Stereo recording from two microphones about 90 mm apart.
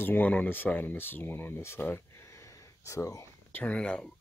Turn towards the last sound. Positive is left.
turn(degrees=10)  # may be behind; listen again after turning